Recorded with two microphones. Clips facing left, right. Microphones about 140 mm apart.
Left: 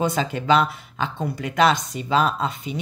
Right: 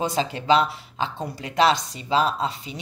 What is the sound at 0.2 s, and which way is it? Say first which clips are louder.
Speech: left 1 dB; 45° left (ahead or behind).